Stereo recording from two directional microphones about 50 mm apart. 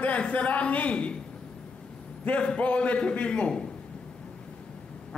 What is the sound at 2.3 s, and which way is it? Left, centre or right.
A man's voice, left.